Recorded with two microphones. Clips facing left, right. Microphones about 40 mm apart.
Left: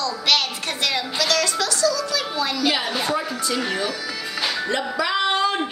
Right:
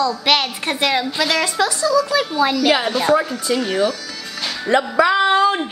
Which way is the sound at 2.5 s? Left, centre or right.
Centre.